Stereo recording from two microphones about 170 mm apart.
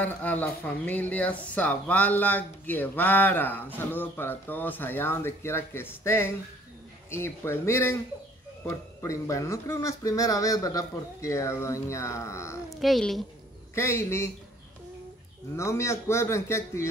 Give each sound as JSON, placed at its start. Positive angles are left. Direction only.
{"t": 0.0, "sound": "speech", "side_deg": 10}
{"t": 12.6, "sound": "speech", "side_deg": 0}
{"t": 13.7, "sound": "speech", "side_deg": 15}
{"t": 15.5, "sound": "speech", "side_deg": 15}